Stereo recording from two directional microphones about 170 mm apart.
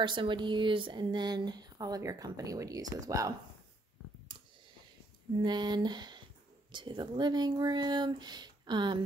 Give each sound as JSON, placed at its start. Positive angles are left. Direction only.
{"t": 0.0, "sound": "speech", "side_deg": -30}
{"t": 5.4, "sound": "speech", "side_deg": -25}